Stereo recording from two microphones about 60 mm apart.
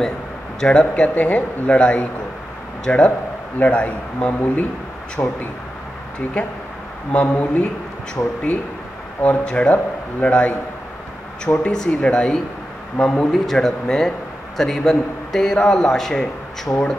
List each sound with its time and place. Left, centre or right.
0.6 s a man's voice: centre
5.2 s speech: left
7.1 s a man's voice: left
8.2 s speech: left
9.2 s a man's voice: left
11.6 s a man's voice: centre
13.3 s a man's voice: centre